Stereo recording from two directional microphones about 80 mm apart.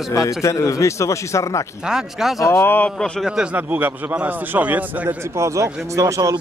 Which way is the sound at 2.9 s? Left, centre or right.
Centre.